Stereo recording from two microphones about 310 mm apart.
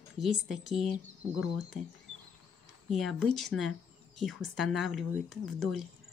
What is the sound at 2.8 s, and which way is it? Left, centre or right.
A woman's voice, centre.